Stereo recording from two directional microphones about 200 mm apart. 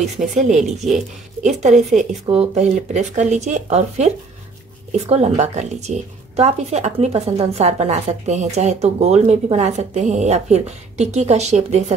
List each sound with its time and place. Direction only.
0.3 s a woman's voice: 40° right (ahead or behind)